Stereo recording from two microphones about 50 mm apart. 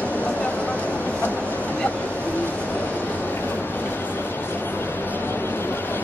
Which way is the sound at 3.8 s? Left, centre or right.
Left.